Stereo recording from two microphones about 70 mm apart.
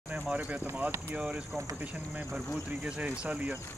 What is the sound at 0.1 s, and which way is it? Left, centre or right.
Speech, right.